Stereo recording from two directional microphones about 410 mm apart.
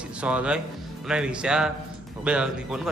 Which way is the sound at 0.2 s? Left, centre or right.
Centre.